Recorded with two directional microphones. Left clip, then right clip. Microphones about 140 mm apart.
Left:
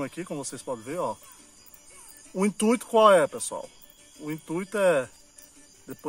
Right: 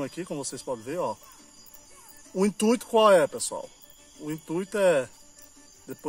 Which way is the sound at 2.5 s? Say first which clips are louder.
Left 1 dB; 20° right (ahead or behind).